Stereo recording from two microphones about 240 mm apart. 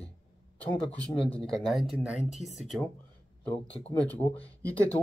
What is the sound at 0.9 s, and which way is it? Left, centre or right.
Speech, centre.